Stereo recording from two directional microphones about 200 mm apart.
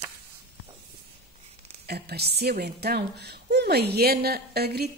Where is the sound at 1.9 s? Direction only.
50° right (ahead or behind).